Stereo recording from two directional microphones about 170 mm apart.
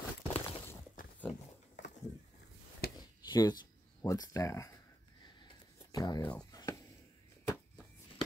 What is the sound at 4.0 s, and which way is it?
Speech, 20° left (ahead or behind).